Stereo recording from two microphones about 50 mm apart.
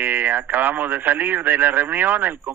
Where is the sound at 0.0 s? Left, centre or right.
Right.